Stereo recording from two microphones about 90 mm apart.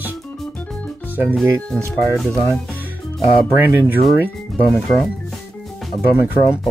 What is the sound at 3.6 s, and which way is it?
Speech, 20° right (ahead or behind).